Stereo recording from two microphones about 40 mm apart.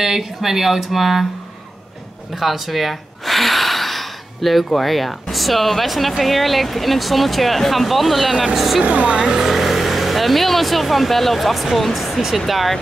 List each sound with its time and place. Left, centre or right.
0.0 s speech: centre
2.3 s gasp: centre
4.6 s speech: centre
8.8 s speech: right
9.2 s speech: centre
9.5 s speech: centre